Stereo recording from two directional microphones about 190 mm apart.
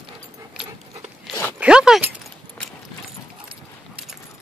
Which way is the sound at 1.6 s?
5° right (ahead or behind).